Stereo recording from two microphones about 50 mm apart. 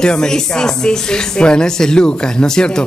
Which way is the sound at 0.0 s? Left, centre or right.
Centre.